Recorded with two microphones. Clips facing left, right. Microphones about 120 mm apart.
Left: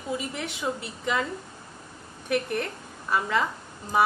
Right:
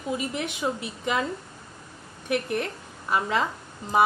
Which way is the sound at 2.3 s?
20° right (ahead or behind).